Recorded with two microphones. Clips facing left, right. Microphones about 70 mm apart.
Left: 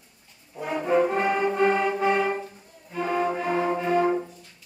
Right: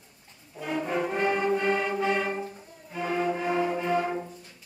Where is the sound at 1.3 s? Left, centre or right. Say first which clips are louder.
Left 3 dB; centre.